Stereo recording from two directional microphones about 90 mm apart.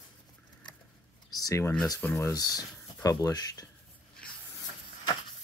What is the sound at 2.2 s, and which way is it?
Speech, 45° left (ahead or behind).